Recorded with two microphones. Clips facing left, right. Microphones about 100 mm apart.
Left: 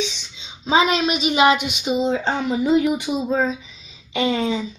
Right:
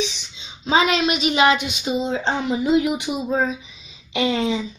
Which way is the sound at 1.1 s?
Centre (ahead or behind).